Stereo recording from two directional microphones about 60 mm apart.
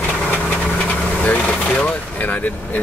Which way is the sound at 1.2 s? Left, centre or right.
Left.